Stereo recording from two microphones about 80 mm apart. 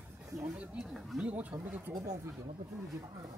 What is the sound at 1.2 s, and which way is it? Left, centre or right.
Speech, centre.